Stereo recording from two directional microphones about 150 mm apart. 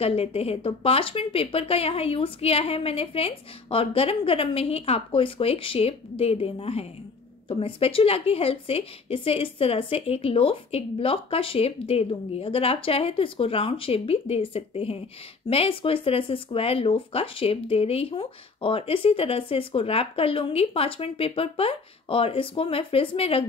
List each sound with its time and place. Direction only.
0.0 s speech: 40° left (ahead or behind)